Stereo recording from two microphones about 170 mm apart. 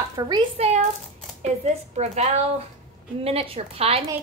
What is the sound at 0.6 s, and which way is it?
Speech, 40° right (ahead or behind).